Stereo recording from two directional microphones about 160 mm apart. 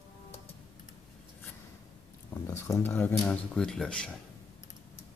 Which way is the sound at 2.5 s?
15° left (ahead or behind).